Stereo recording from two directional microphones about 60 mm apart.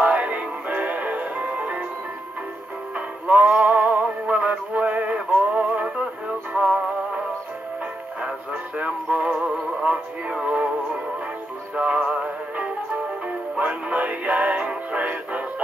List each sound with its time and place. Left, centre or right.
0.0 s music: right
3.3 s synthetic singing: right
8.7 s music: right
11.7 s music: centre